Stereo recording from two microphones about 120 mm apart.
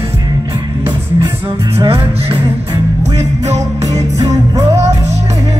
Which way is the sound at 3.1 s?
65° right (ahead or behind).